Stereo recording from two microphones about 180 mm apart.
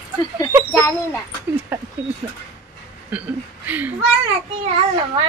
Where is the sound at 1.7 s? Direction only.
10° right (ahead or behind).